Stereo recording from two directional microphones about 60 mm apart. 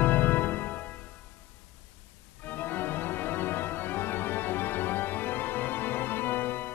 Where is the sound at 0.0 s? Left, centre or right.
Left.